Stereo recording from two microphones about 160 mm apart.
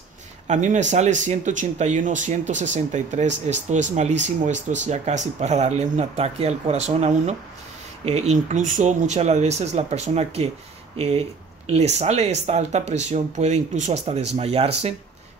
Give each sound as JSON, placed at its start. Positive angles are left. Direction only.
{"t": 0.5, "sound": "speech", "side_deg": -50}